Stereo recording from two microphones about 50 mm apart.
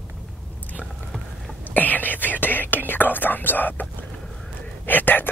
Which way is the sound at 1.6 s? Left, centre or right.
Left.